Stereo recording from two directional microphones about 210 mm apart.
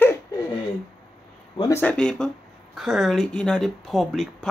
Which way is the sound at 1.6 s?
10° left (ahead or behind).